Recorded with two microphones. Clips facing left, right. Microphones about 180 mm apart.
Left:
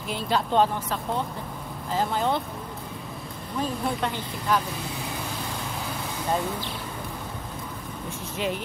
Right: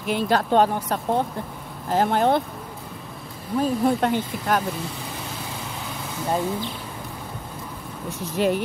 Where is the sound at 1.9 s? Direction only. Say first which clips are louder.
Right 6 dB; 60° right (ahead or behind).